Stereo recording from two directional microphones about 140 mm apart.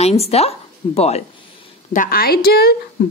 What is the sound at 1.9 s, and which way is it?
Speech, 90° left.